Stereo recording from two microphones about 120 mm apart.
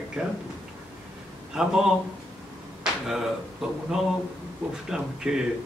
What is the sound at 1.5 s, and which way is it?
Speech, 5° right (ahead or behind).